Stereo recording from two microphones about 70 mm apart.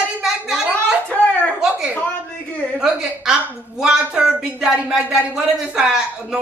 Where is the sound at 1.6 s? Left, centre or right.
Centre.